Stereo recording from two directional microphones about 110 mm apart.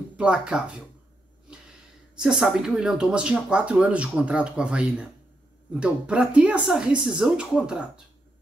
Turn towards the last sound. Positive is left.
turn(degrees=-10)  # may be behind; listen again after turning